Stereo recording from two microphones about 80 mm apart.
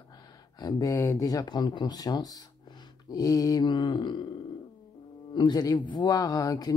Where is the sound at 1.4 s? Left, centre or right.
Left.